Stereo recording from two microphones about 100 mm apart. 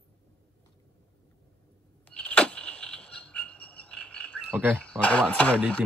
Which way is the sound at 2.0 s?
10° left (ahead or behind).